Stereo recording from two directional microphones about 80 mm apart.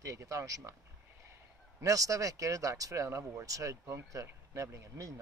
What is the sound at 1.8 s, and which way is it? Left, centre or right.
Speech, right.